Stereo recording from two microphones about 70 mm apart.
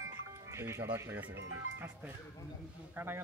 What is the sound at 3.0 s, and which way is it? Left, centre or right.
Speech, right.